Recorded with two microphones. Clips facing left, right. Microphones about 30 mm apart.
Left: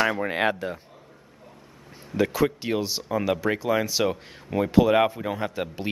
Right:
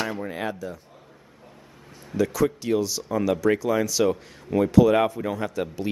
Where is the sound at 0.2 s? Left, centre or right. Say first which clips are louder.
Left 5 dB; left.